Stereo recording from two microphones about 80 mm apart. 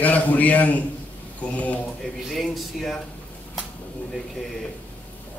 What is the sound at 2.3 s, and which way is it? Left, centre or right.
Speech, centre.